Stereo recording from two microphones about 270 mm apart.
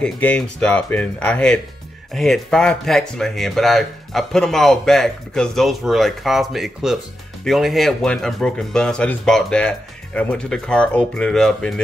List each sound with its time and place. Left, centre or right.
0.0 s speech: centre